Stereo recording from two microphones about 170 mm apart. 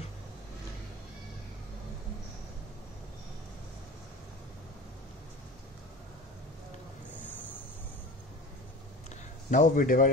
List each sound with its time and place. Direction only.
9.5 s a man's voice: 50° left (ahead or behind)